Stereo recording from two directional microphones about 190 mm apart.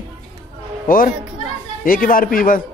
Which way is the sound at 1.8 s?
45° left (ahead or behind).